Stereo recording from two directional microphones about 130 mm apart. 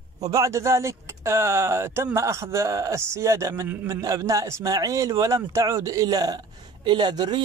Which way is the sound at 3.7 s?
15° right (ahead or behind).